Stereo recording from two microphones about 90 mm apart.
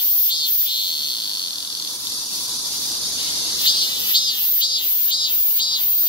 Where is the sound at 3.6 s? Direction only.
55° left (ahead or behind).